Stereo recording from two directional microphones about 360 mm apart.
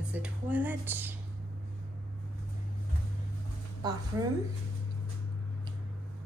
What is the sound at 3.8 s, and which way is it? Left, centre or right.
Speech, centre.